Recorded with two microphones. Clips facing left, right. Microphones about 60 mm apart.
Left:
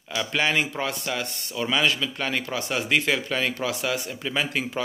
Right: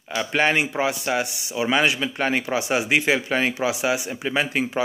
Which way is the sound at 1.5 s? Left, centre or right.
Right.